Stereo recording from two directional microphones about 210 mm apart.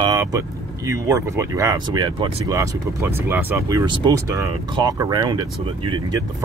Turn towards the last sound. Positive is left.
turn(degrees=-20)  # may be behind; listen again after turning